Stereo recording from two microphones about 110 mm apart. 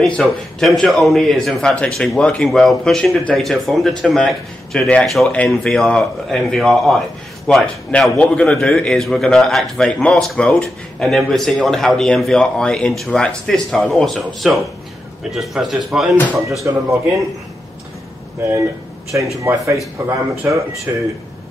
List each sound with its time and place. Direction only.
0.0 s a man's voice: 5° left (ahead or behind)
16.6 s speech: 25° right (ahead or behind)
19.4 s speech: 25° right (ahead or behind)